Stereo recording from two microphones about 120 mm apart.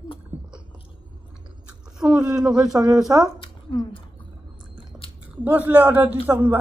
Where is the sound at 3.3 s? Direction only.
40° left (ahead or behind).